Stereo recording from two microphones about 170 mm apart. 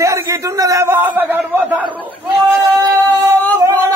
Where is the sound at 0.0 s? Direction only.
20° right (ahead or behind).